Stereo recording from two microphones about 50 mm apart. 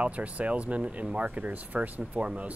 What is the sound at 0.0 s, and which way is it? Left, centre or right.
Speech, right.